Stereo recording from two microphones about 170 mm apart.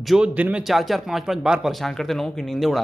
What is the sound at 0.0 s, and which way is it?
Speech, 5° right (ahead or behind).